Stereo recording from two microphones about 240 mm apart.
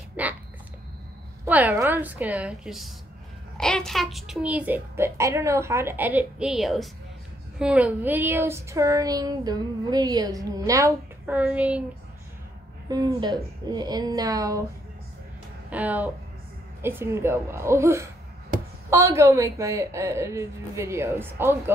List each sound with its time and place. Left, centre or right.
0.1 s a sound: centre
1.4 s speech: centre
12.9 s speech: centre
15.7 s speech: centre